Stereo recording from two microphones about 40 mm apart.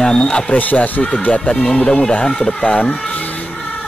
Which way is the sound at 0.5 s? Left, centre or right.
Left.